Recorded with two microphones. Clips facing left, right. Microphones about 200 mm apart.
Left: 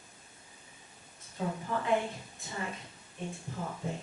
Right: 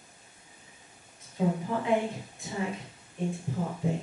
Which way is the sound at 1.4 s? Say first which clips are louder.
Right 5 dB; 10° right (ahead or behind).